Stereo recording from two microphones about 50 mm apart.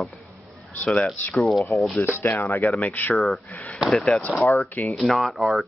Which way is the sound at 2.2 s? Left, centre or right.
Left.